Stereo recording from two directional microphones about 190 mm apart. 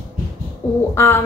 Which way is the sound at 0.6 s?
10° left (ahead or behind).